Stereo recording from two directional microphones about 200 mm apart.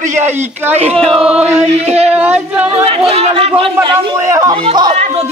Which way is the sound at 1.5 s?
35° right (ahead or behind).